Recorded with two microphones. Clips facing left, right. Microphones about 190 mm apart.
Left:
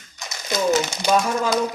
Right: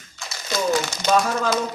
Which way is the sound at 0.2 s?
20° left (ahead or behind).